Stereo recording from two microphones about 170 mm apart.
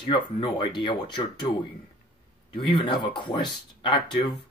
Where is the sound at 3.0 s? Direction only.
25° left (ahead or behind).